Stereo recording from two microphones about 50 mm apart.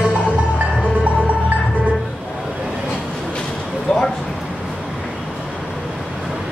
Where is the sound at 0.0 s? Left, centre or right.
Right.